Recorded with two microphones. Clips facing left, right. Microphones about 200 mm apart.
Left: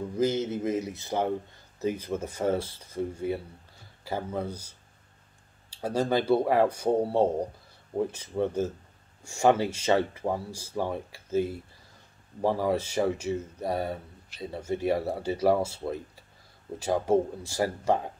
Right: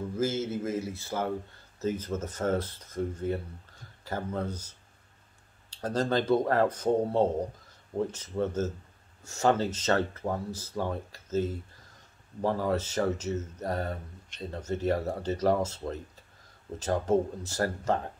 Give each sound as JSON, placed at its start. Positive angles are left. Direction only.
{"t": 0.1, "sound": "speech", "side_deg": 15}